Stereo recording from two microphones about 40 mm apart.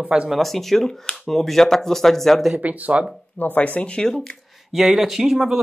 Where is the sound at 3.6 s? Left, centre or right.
Left.